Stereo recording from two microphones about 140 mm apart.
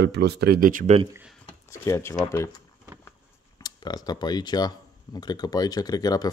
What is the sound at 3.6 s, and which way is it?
Speech, 30° left (ahead or behind).